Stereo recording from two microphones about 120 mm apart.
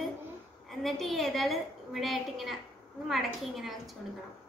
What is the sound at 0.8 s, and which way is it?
A woman's voice, centre (ahead or behind).